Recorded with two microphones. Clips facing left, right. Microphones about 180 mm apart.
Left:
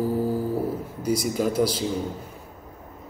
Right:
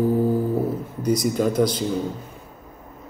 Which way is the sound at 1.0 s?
5° left (ahead or behind).